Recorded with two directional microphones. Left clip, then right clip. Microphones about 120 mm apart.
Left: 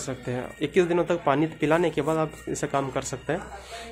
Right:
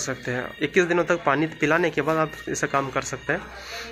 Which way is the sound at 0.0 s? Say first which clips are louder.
Right 4 dB; 15° left (ahead or behind).